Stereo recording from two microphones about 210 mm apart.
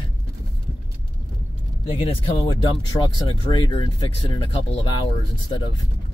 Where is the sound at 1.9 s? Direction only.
25° left (ahead or behind).